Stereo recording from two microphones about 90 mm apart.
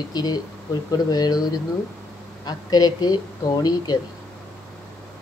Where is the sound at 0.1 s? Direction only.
50° left (ahead or behind).